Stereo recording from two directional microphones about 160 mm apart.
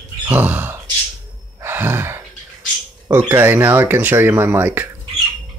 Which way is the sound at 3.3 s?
15° right (ahead or behind).